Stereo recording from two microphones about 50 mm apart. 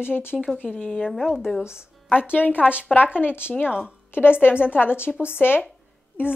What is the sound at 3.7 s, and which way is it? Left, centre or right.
Speech, right.